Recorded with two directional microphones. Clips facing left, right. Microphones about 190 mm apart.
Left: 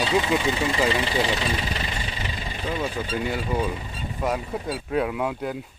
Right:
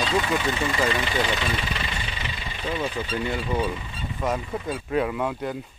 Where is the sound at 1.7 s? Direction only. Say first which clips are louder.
Left 1 dB; 35° left (ahead or behind).